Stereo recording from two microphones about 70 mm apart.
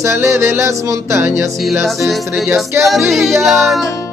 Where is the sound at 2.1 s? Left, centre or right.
Centre.